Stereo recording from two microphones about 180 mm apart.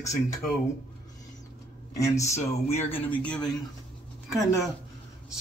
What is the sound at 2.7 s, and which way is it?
Speech, 10° left (ahead or behind).